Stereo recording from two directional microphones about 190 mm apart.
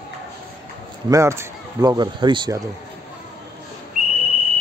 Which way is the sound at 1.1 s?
15° right (ahead or behind).